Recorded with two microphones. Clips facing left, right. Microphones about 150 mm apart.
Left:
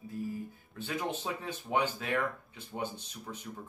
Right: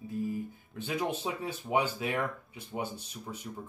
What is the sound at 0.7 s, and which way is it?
Speech, 15° right (ahead or behind).